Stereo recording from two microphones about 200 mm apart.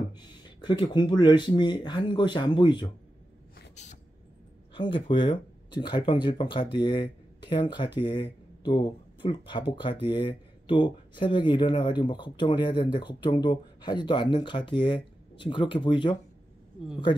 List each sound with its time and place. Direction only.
0.6 s speech: 20° left (ahead or behind)
3.5 s a sound: 35° left (ahead or behind)
4.9 s speech: 25° left (ahead or behind)